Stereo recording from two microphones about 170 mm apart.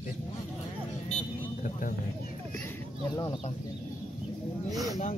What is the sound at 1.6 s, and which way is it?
Speech, 50° left (ahead or behind).